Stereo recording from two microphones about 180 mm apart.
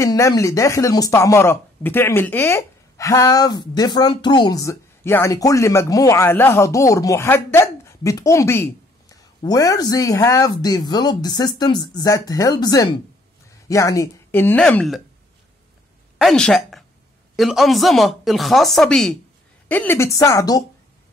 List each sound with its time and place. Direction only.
0.0 s speech: 20° left (ahead or behind)
16.2 s speech: 5° left (ahead or behind); by 20.6 s 20° left (ahead or behind)